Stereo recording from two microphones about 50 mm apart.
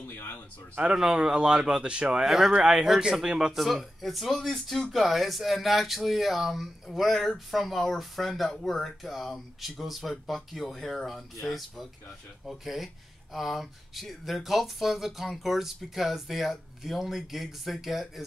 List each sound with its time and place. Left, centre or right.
0.0 s a sound: left
0.9 s speech: centre
3.5 s speech: centre